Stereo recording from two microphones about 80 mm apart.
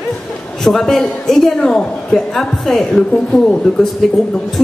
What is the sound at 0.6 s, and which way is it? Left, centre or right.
A woman's voice, centre.